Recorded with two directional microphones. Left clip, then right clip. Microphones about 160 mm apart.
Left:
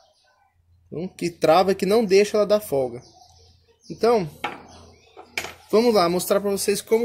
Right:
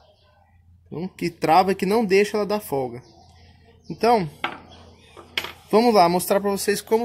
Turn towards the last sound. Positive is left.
turn(degrees=-35)  # may be behind; listen again after turning